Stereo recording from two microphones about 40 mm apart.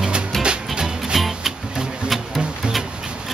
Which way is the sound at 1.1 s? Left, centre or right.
Centre.